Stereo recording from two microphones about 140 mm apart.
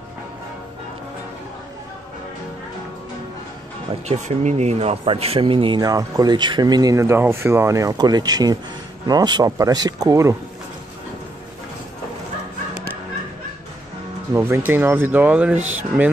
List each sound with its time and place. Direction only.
4.1 s speech: 55° right (ahead or behind); by 10.3 s 25° right (ahead or behind)
14.3 s speech: 20° right (ahead or behind)